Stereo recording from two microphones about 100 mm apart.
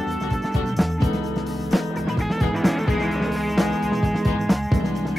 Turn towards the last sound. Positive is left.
turn(degrees=0)  # may be behind; listen again after turning